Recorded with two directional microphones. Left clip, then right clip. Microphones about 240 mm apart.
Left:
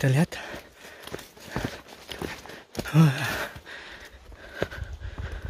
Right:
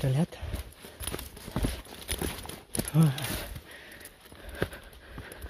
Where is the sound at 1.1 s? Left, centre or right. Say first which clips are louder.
Left 2 dB; right.